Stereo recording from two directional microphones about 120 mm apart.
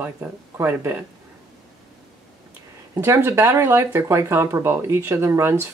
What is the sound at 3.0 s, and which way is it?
Speech, 20° right (ahead or behind).